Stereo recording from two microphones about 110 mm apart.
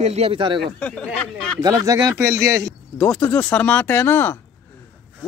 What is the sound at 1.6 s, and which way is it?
Speech, 30° right (ahead or behind).